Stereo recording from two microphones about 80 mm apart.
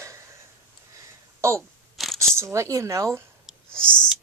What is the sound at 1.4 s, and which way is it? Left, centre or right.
A woman's voice, right.